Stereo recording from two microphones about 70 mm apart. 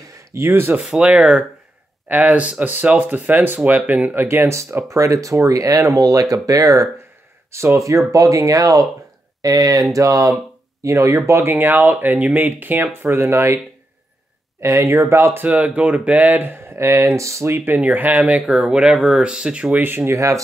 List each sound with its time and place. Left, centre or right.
0.3 s speech: right
0.8 s speech: centre; by 4.8 s right
4.8 s speech: right
14.6 s speech: right
15.4 s speech: right
17.6 s speech: right
18.4 s speech: centre
19.8 s speech: right
20.2 s speech: right